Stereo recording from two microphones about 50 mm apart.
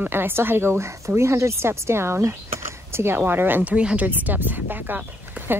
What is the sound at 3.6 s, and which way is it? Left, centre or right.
Speech, right.